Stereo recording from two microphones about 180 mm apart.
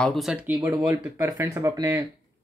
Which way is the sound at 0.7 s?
20° right (ahead or behind).